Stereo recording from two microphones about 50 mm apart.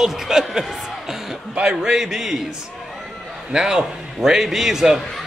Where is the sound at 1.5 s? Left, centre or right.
Centre.